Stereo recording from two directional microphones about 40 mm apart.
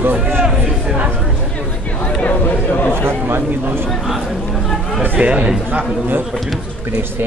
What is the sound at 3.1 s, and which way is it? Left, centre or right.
Speech, right.